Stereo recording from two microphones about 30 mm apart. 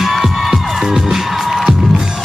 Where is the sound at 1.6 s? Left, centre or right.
Right.